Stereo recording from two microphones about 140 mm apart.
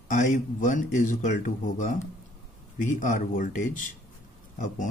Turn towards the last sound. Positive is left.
turn(degrees=65)  # may be behind; listen again after turning